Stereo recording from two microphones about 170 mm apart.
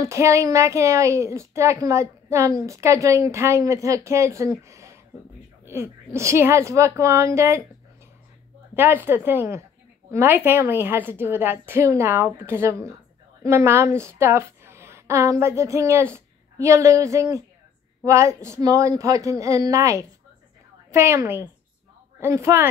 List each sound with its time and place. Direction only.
0.0 s a woman's voice: 15° right (ahead or behind)
8.7 s a woman's voice: 10° right (ahead or behind)